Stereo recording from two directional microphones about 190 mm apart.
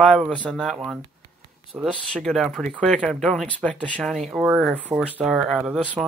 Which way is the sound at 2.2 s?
Centre (ahead or behind).